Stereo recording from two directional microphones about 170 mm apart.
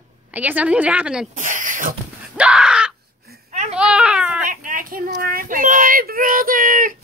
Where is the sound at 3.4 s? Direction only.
40° right (ahead or behind).